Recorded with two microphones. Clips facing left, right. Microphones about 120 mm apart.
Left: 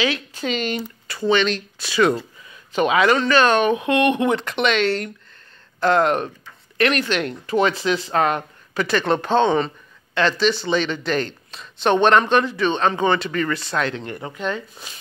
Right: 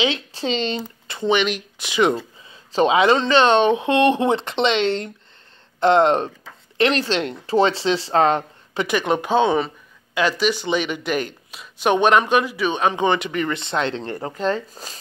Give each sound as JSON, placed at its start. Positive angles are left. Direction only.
{"t": 0.0, "sound": "speech", "side_deg": -25}
{"t": 8.8, "sound": "speech", "side_deg": -10}